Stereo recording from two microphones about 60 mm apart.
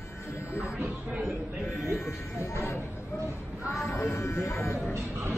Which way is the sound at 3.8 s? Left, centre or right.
Left.